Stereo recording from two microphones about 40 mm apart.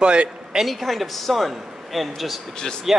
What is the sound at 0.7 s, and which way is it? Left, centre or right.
Speech, centre.